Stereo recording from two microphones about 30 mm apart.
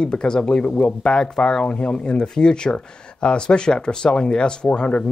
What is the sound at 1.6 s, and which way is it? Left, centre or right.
Speech, left.